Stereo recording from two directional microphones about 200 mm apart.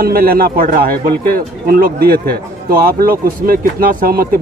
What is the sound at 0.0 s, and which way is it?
Speech, 50° right (ahead or behind).